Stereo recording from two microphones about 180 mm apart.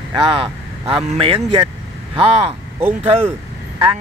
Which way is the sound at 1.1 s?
35° right (ahead or behind).